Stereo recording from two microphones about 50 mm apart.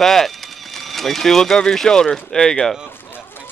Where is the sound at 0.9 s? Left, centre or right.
Centre.